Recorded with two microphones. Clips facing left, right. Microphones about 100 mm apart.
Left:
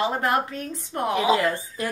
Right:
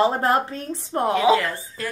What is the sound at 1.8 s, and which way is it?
Speech, 20° left (ahead or behind).